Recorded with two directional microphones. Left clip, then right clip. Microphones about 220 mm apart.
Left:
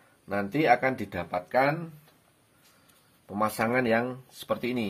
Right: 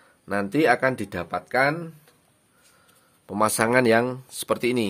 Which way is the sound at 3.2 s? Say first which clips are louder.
Right 6 dB; 45° right (ahead or behind).